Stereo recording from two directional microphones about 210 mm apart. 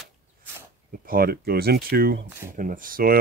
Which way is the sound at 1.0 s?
45° right (ahead or behind).